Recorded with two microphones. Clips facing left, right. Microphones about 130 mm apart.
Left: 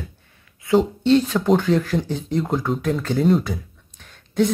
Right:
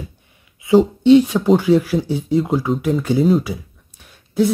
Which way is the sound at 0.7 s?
15° right (ahead or behind).